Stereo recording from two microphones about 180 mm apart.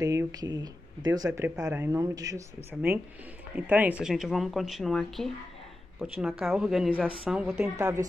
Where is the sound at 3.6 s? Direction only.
10° right (ahead or behind).